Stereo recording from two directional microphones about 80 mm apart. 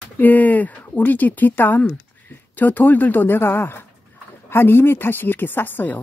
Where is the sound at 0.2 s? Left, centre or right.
Left.